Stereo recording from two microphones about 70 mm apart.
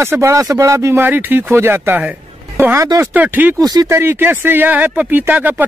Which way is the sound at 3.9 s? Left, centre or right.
Right.